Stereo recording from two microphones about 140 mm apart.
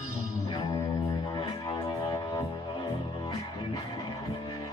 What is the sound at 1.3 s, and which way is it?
Music, 30° left (ahead or behind).